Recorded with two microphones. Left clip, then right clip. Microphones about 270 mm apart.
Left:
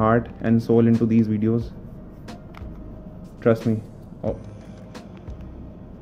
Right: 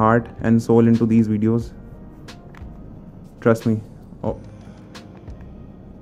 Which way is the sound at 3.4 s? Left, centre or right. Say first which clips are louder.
Right 2 dB; centre.